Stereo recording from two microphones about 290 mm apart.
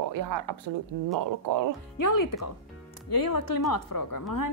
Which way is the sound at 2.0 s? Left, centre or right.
Left.